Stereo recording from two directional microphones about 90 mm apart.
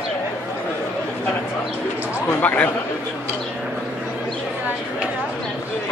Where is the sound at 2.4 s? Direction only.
15° left (ahead or behind).